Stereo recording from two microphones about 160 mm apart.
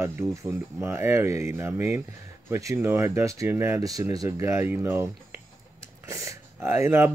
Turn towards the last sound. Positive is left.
turn(degrees=-15)  # may be behind; listen again after turning